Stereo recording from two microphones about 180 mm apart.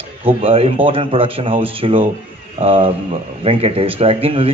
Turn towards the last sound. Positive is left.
turn(degrees=-30)  # may be behind; listen again after turning